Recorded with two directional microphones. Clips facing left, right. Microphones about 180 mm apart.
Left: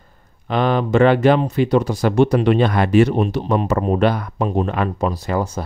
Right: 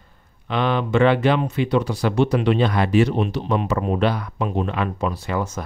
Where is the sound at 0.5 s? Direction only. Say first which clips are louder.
Left 3 dB; 45° left (ahead or behind).